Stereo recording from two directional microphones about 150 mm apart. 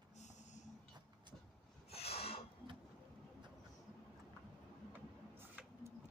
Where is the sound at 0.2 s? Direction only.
50° left (ahead or behind).